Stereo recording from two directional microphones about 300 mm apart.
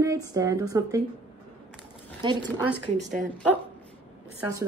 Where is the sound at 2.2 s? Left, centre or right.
Centre.